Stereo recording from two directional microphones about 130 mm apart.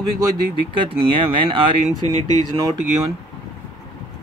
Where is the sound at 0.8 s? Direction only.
40° right (ahead or behind).